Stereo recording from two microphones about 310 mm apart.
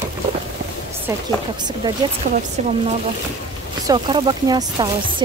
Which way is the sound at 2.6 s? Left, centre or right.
Right.